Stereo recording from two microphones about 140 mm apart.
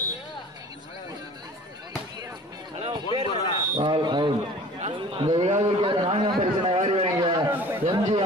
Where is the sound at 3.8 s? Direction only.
35° right (ahead or behind).